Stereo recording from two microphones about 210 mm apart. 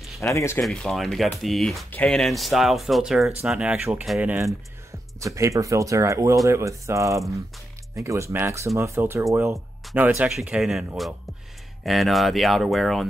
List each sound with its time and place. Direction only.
0.2 s speech: 15° left (ahead or behind)
0.6 s speech: centre (ahead or behind)